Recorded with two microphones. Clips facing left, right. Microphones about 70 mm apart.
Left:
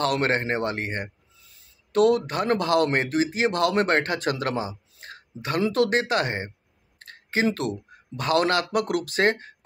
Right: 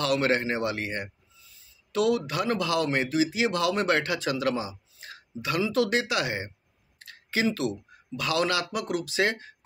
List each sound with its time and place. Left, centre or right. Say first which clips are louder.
0.0 s speech: left 1 dB; left
1.5 s speech: left 6 dB; left
7.0 s a sound: left 3 dB; left
7.4 s speech: left 2 dB; left